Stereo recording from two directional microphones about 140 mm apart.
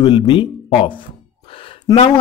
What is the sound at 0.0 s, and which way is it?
Speech, 35° left (ahead or behind).